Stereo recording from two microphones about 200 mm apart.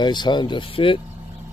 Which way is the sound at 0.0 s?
20° left (ahead or behind).